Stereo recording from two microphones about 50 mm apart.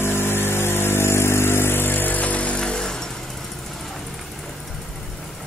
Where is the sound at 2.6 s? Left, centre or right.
Centre.